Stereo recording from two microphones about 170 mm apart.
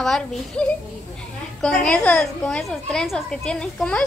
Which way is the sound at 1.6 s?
5° left (ahead or behind).